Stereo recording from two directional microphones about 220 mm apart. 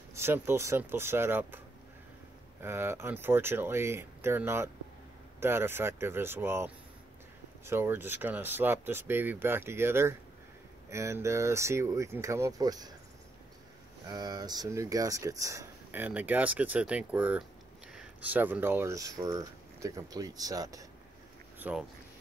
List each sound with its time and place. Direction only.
0.1 s speech: 10° right (ahead or behind)
2.6 s speech: 10° right (ahead or behind)
14.0 s speech: 20° right (ahead or behind)